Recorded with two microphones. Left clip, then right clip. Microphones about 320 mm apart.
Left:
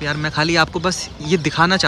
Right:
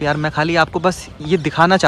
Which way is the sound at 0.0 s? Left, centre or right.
Centre.